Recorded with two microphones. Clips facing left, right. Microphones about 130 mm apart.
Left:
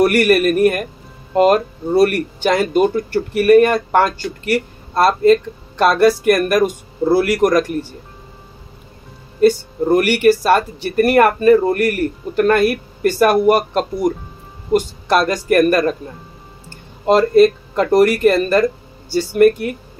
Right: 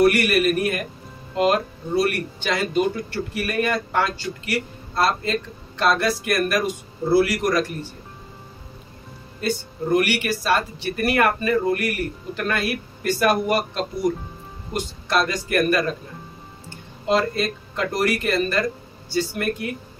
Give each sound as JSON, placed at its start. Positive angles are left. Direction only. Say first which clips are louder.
{"t": 0.0, "sound": "speech", "louder": "left 5 dB", "side_deg": 50}
{"t": 9.4, "sound": "speech", "louder": "left 12 dB", "side_deg": 50}
{"t": 17.0, "sound": "speech", "louder": "left 11 dB", "side_deg": 50}